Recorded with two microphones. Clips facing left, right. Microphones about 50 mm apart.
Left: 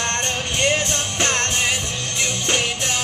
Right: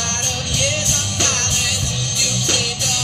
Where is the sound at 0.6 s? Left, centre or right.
Left.